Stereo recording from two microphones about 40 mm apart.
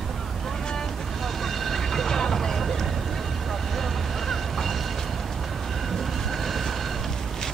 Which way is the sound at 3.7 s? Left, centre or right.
Centre.